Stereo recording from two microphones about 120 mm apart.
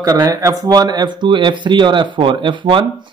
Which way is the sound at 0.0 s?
30° right (ahead or behind).